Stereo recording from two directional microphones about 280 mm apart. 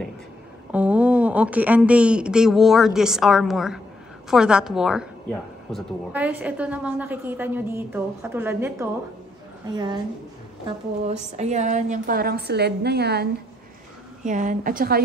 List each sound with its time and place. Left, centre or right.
0.7 s a woman's voice: centre
11.3 s a woman's voice: right